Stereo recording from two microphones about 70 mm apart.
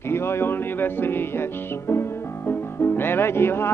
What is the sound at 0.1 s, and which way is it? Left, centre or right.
Music, left.